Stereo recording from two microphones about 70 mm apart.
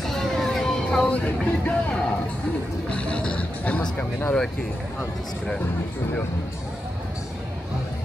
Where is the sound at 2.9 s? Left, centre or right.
Centre.